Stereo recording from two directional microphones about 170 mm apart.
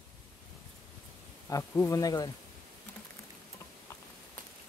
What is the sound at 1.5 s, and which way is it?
Speech, 15° left (ahead or behind).